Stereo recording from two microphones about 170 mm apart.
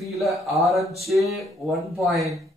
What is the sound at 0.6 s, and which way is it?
Speech, centre (ahead or behind).